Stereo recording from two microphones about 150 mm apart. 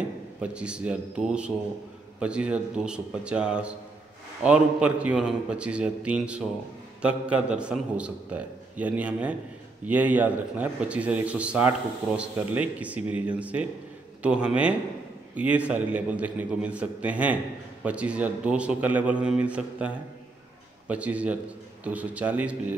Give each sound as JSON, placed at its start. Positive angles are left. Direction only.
{"t": 0.4, "sound": "a man's voice", "side_deg": -5}